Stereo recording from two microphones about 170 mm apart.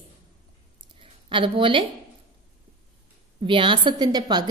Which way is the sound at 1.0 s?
30° right (ahead or behind).